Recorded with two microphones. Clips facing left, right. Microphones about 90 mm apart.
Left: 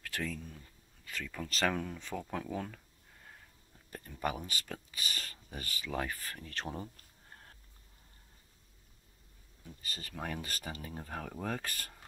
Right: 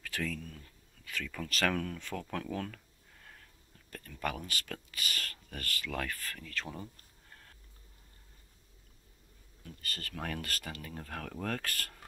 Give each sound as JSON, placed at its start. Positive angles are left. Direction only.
{"t": 0.0, "sound": "a sound", "side_deg": 5}
{"t": 1.5, "sound": "speech", "side_deg": 5}
{"t": 3.9, "sound": "speech", "side_deg": 20}
{"t": 4.5, "sound": "speech", "side_deg": 5}
{"t": 9.6, "sound": "speech", "side_deg": 10}
{"t": 10.6, "sound": "speech", "side_deg": 25}